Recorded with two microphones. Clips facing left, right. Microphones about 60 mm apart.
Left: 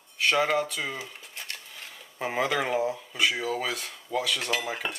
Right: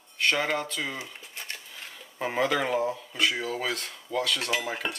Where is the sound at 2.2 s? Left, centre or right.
Centre.